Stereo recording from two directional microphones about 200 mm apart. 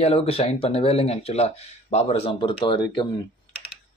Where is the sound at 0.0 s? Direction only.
30° left (ahead or behind).